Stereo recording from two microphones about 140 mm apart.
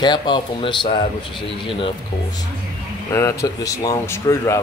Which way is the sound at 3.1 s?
20° left (ahead or behind).